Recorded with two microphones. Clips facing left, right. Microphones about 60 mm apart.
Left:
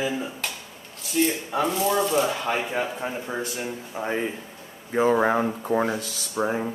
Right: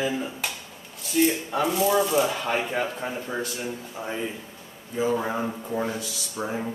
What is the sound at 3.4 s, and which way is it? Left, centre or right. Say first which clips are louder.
Speech: left 1 dB; left.